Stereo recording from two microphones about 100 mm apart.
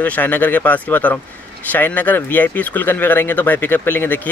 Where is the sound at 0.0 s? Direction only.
15° left (ahead or behind).